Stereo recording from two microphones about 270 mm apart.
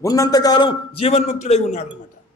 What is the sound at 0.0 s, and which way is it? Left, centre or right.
A man's voice, centre.